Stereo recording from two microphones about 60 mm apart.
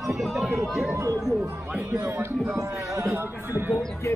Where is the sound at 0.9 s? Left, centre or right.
Right.